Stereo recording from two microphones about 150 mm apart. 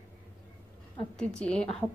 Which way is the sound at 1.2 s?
5° left (ahead or behind).